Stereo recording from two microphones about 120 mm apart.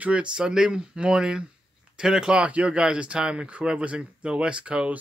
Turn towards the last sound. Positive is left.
turn(degrees=-10)  # may be behind; listen again after turning